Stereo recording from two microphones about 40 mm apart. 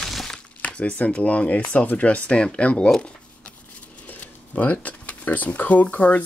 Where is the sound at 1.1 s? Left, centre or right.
Left.